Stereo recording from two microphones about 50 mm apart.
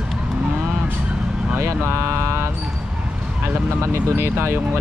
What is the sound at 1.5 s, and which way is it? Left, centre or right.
Speech, right.